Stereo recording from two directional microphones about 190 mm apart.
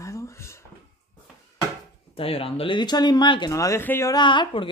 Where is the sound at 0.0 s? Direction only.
15° left (ahead or behind).